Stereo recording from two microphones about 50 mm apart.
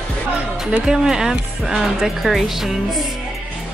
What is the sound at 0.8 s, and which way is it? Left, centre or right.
Speech, centre.